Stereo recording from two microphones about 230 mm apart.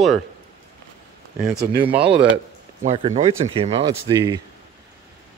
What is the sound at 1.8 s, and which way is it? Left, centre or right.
Speech, centre.